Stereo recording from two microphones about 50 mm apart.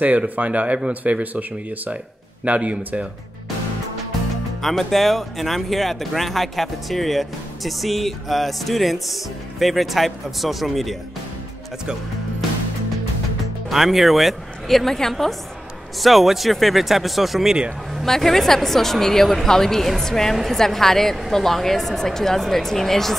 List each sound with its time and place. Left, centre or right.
0.0 s speech: right
2.4 s speech: right
4.6 s speech: centre
13.7 s speech: centre
18.0 s a woman's voice: centre